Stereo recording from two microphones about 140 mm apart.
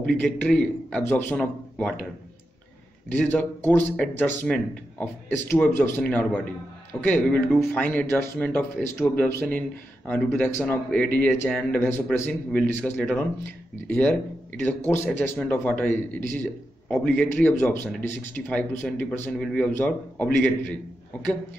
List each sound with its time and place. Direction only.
0.0 s speech: 10° left (ahead or behind)
3.1 s speech: 10° left (ahead or behind)